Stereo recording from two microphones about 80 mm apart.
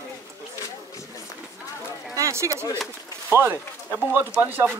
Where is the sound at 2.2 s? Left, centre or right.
Right.